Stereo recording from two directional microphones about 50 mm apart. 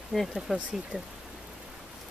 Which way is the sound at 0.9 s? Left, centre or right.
Right.